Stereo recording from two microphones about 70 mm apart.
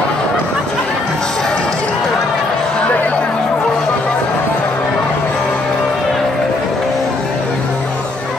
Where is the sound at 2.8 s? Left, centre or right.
Left.